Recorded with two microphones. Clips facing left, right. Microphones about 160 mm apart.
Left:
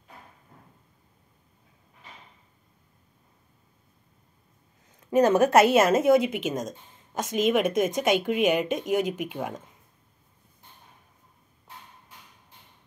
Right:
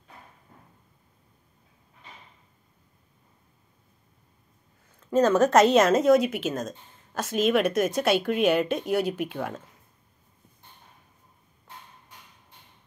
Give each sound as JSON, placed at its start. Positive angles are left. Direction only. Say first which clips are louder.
{"t": 5.0, "sound": "speech", "louder": "left 1 dB", "side_deg": 15}